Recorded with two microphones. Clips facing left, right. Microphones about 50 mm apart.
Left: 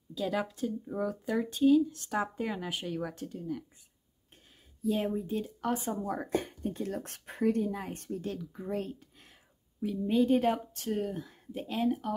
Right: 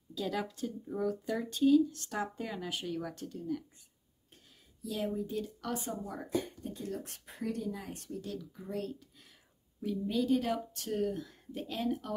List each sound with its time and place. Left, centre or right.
0.1 s speech: centre
4.8 s speech: left
6.0 s speech: left
8.8 s a sound: left
10.0 s speech: left
10.9 s speech: centre